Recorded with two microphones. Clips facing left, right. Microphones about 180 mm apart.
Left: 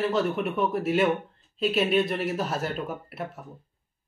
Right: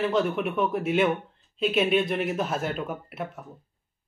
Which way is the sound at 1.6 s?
Centre (ahead or behind).